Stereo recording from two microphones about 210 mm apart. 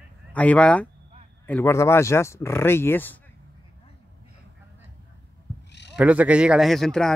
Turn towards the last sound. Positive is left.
turn(degrees=0)  # may be behind; listen again after turning